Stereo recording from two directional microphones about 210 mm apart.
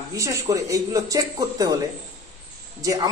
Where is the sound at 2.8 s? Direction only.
15° right (ahead or behind).